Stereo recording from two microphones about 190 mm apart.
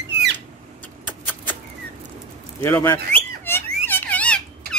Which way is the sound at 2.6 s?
10° left (ahead or behind).